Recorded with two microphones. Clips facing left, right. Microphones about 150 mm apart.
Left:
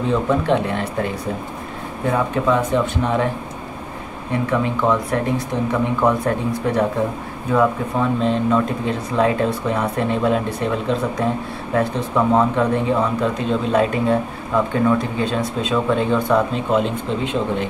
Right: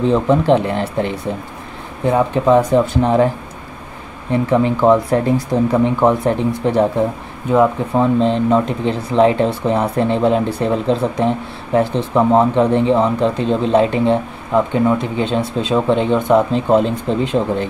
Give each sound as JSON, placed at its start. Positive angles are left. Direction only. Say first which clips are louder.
{"t": 0.1, "sound": "speech", "louder": "right 3 dB", "side_deg": -30}
{"t": 2.1, "sound": "speech", "louder": "right 6 dB", "side_deg": -30}
{"t": 4.3, "sound": "speech", "louder": "right 5 dB", "side_deg": -30}
{"t": 16.7, "sound": "speech", "louder": "right 5 dB", "side_deg": -35}